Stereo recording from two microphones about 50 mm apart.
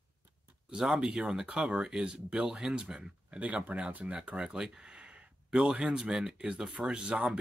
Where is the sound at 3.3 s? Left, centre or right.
Right.